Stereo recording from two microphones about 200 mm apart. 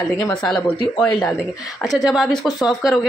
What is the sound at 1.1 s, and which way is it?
Speech, 20° left (ahead or behind).